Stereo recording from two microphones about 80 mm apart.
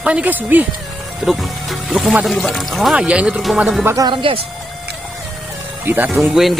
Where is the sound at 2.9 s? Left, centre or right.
Centre.